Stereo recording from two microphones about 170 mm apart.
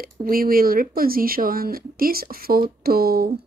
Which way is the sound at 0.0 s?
60° right (ahead or behind).